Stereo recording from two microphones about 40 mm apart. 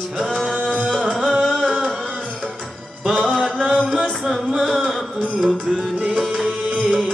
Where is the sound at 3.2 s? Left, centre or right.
Centre.